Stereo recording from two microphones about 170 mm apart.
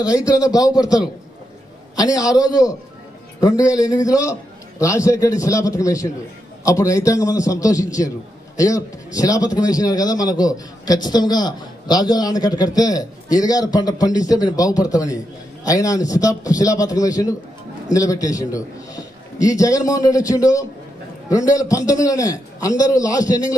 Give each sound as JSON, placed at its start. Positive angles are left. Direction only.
{"t": 0.0, "sound": "a man's voice", "side_deg": 20}